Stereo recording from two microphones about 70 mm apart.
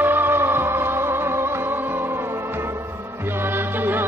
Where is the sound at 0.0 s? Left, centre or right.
Right.